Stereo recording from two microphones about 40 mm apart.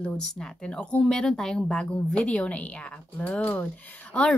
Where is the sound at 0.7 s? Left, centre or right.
Left.